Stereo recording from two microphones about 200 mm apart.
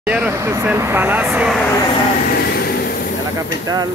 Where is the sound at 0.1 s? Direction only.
10° right (ahead or behind).